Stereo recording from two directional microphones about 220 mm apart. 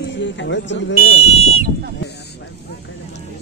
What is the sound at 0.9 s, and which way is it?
Speech, 70° left (ahead or behind).